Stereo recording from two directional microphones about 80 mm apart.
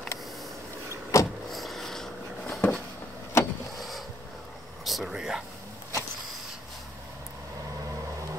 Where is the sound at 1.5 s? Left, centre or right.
Centre.